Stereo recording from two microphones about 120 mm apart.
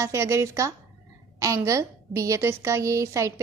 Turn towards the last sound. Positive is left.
turn(degrees=-25)  # may be behind; listen again after turning